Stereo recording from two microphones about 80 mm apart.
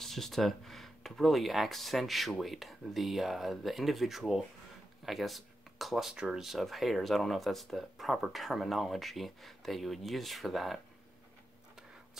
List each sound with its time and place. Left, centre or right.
0.0 s speech: centre